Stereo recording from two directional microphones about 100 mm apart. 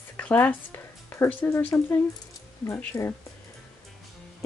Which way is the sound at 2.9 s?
30° left (ahead or behind).